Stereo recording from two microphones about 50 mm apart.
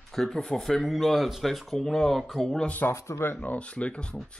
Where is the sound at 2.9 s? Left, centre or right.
Left.